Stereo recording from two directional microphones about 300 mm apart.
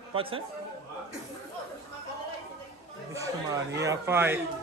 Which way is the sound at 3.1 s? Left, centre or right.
Centre.